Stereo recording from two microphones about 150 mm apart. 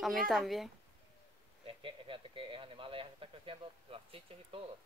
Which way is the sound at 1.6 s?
35° right (ahead or behind).